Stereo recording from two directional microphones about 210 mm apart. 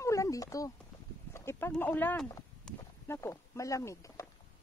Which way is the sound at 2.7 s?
10° left (ahead or behind).